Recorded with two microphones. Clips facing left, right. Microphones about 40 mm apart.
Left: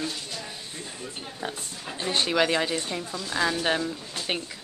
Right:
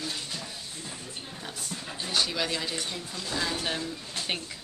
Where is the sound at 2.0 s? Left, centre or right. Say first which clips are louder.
Left 6 dB; left.